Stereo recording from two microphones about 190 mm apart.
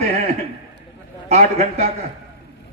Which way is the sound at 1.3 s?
35° right (ahead or behind).